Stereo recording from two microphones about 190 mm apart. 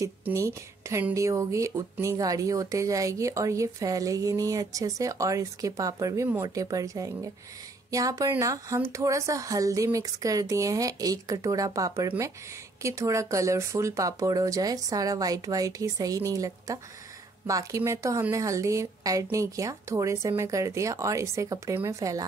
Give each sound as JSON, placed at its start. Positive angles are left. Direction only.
{"t": 0.0, "sound": "speech", "side_deg": -15}